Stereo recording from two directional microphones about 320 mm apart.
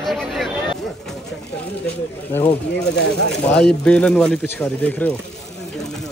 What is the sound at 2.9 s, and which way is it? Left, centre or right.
Speech, left.